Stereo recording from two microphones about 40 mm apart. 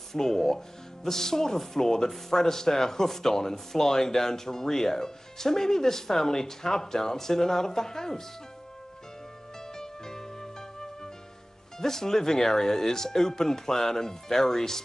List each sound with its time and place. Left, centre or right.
0.1 s speech: centre
9.8 s music: centre
11.8 s speech: centre